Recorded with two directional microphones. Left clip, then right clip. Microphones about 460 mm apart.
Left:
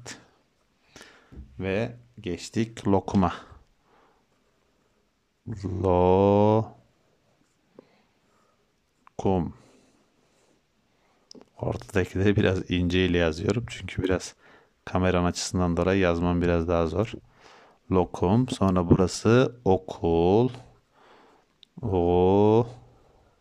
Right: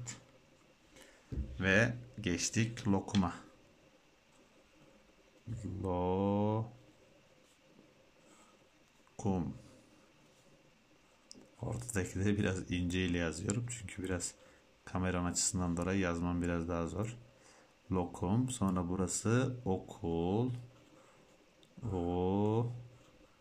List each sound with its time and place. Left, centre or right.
1.0 s a sound: left
1.6 s speech: centre
5.6 s speech: left
9.1 s speech: centre
11.2 s speech: centre
21.9 s speech: centre